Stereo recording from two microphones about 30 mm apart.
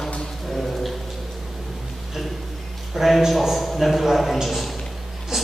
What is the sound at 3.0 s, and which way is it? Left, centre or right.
A man's voice, centre.